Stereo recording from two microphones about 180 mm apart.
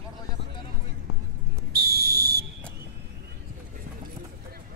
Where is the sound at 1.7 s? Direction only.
60° right (ahead or behind).